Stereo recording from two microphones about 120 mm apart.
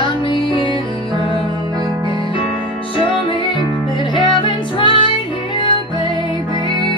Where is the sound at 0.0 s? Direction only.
45° left (ahead or behind).